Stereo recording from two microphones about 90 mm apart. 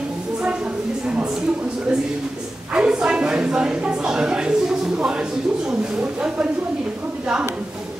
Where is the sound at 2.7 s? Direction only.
10° right (ahead or behind).